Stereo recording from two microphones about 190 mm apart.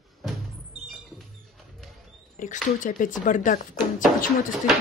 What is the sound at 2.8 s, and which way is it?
Speech, 45° left (ahead or behind).